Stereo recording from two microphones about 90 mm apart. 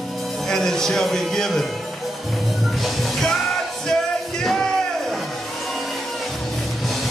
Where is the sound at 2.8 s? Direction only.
Centre (ahead or behind).